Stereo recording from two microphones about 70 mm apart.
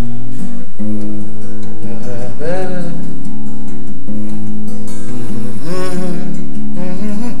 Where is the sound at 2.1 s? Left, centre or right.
Centre.